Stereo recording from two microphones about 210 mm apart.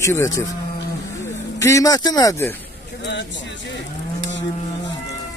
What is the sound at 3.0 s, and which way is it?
Speech, 55° left (ahead or behind).